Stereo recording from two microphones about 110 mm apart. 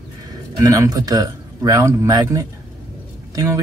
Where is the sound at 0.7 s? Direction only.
30° right (ahead or behind).